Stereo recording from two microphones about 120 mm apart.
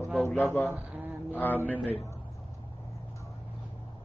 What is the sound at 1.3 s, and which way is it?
Speech, 15° left (ahead or behind).